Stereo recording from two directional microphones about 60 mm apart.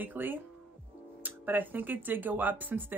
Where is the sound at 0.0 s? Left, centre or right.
Right.